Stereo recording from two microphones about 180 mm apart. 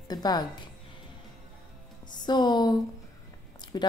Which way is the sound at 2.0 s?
25° left (ahead or behind).